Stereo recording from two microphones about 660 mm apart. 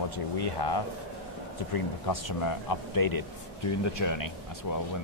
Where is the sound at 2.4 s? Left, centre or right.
Left.